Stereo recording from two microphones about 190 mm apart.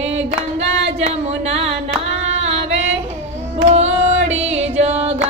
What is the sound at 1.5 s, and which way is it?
Music, 30° right (ahead or behind).